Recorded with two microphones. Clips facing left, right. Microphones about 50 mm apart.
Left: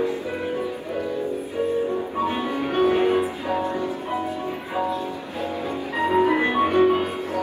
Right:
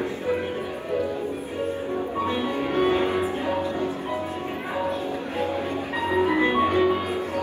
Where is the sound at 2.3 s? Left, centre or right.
Left.